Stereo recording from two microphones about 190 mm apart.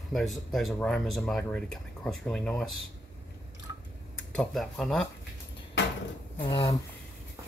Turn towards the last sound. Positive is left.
turn(degrees=25)  # may be behind; listen again after turning